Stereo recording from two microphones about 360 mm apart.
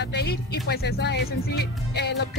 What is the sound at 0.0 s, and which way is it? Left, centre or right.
Speech, left.